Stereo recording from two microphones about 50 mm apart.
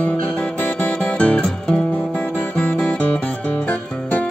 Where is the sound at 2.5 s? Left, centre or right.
Centre.